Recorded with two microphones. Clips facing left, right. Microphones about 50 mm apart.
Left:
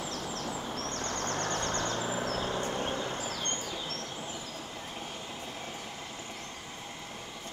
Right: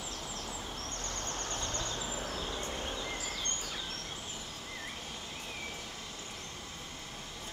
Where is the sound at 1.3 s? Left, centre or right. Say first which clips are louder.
Left 7 dB; left.